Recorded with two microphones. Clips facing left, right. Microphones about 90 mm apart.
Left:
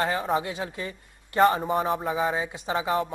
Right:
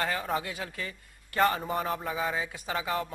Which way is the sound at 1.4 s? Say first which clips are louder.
Left 6 dB; 35° left (ahead or behind).